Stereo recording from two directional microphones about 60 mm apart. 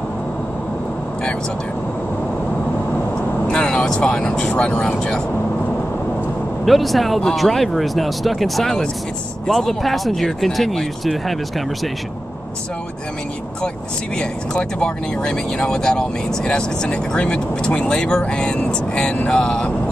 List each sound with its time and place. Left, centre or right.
3.4 s speech: centre
6.6 s speech: centre
14.1 s speech: centre